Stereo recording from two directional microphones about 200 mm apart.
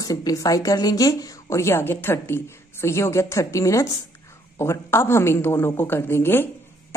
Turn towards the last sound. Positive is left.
turn(degrees=10)  # may be behind; listen again after turning